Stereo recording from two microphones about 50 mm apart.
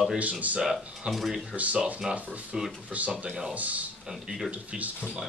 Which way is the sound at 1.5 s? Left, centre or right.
Right.